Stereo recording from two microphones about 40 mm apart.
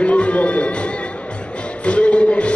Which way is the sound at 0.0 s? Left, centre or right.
Left.